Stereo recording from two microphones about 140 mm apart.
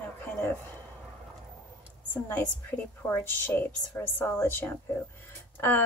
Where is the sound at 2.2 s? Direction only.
15° left (ahead or behind).